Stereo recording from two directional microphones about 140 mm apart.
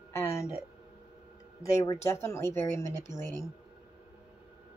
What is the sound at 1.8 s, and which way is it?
Speech, 20° left (ahead or behind).